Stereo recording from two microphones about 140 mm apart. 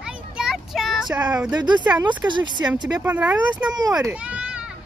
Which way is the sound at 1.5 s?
30° right (ahead or behind).